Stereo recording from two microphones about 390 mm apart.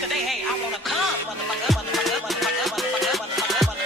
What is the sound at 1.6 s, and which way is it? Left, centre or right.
Music, centre.